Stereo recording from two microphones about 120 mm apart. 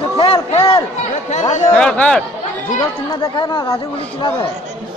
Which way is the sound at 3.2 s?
40° left (ahead or behind).